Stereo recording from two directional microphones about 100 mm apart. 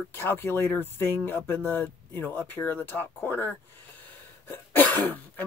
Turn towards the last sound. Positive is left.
turn(degrees=20)  # may be behind; listen again after turning